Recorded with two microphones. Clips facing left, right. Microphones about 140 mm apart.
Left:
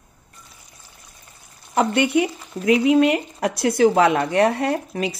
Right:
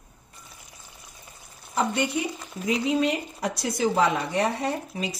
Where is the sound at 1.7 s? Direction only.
70° left (ahead or behind).